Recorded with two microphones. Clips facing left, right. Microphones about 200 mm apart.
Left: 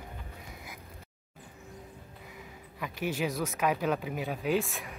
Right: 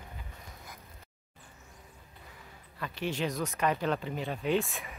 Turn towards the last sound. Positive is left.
turn(degrees=0)  # may be behind; listen again after turning